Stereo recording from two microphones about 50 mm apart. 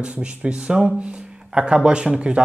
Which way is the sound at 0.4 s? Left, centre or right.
Right.